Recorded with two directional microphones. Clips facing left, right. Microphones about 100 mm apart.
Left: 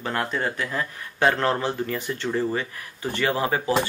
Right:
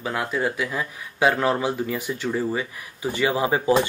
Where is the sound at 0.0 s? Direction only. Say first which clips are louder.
Right 1 dB; 5° right (ahead or behind).